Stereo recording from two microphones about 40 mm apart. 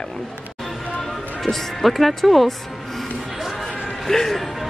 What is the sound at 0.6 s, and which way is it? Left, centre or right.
Music, centre.